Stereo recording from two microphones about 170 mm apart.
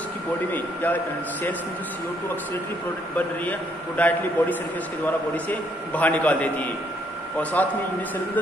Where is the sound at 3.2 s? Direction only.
10° left (ahead or behind).